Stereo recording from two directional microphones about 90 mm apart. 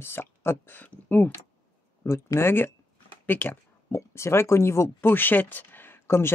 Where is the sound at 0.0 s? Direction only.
25° left (ahead or behind).